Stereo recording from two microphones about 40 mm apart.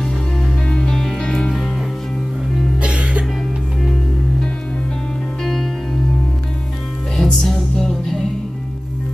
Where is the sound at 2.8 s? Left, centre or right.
Right.